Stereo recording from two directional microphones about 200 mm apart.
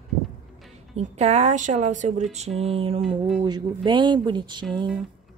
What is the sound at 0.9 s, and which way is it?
A woman's voice, 35° right (ahead or behind).